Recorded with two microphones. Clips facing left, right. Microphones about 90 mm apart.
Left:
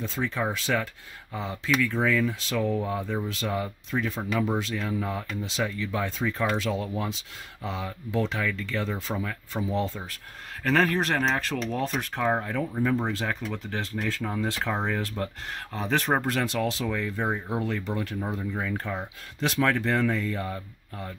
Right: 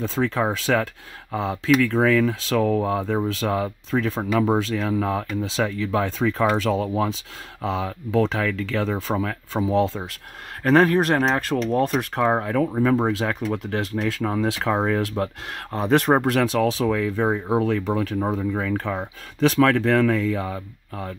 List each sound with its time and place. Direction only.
0.2 s speech: 90° right
2.0 s speech: 65° right (ahead or behind); by 8.9 s 90° right
9.1 s speech: 70° right (ahead or behind)
9.7 s speech: 90° right
10.6 s speech: 45° right (ahead or behind)
13.0 s speech: 75° right (ahead or behind)
14.6 s speech: 50° right (ahead or behind)
15.0 s speech: 75° right (ahead or behind)
15.7 s speech: 55° right (ahead or behind)
16.2 s speech: 70° right (ahead or behind); by 20.4 s 90° right